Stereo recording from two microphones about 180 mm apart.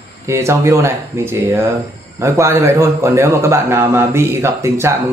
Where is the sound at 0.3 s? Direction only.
15° right (ahead or behind).